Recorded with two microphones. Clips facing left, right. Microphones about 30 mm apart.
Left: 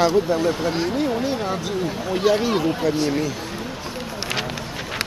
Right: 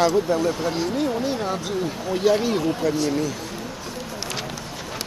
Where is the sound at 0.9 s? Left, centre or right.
Centre.